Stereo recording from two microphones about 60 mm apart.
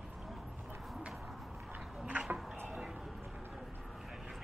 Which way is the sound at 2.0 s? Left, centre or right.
Right.